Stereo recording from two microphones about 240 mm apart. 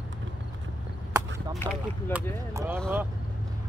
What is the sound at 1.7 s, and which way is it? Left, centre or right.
Speech, centre.